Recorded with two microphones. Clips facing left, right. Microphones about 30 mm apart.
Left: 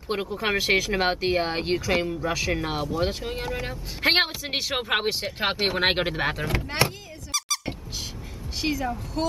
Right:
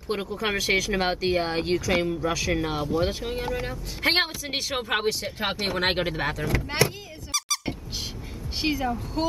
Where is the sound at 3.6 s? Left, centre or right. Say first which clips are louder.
Left 4 dB; centre.